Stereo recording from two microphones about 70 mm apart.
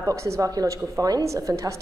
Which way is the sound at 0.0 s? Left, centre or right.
Right.